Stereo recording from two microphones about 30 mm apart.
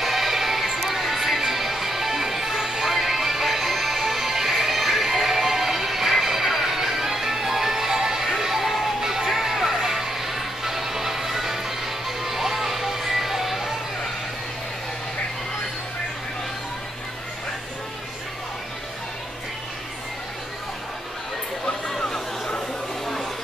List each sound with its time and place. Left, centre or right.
0.0 s music: centre
21.9 s chatter: centre